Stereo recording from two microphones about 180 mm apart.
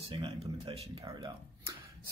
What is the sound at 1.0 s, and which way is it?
Speech, 15° right (ahead or behind).